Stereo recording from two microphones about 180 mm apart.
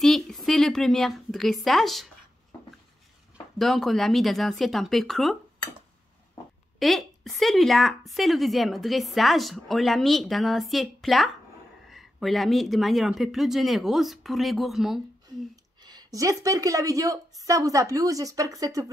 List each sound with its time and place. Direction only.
0.0 s a woman's voice: centre (ahead or behind)
3.5 s a woman's voice: centre (ahead or behind)
6.8 s a woman's voice: centre (ahead or behind)
15.5 s speech: 20° right (ahead or behind)